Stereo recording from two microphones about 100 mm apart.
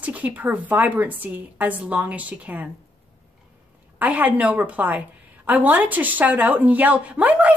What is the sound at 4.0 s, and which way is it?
Speech, 15° right (ahead or behind).